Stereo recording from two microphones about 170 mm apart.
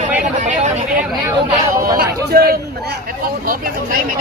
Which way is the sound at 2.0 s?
70° right (ahead or behind).